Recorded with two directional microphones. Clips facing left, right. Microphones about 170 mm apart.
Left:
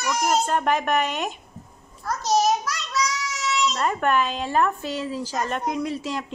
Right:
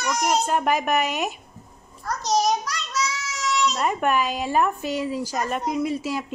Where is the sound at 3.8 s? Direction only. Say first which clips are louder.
Even; 10° right (ahead or behind).